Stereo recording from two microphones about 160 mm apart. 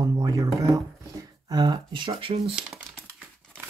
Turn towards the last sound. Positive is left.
turn(degrees=-15)  # may be behind; listen again after turning